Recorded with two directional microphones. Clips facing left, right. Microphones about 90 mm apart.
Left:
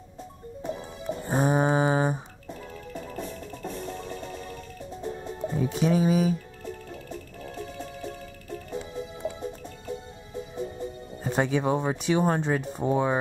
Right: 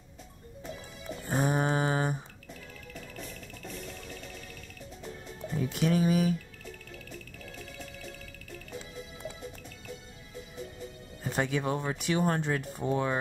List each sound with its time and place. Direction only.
0.7 s music: 30° left (ahead or behind)
2.9 s music: 30° left (ahead or behind)